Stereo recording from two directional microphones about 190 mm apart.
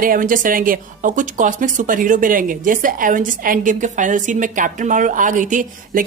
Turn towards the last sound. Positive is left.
turn(degrees=-45)  # may be behind; listen again after turning